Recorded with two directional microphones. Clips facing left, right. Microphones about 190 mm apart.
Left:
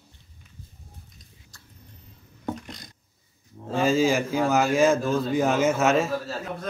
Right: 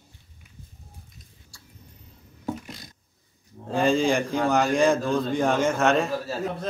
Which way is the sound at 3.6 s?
Centre (ahead or behind).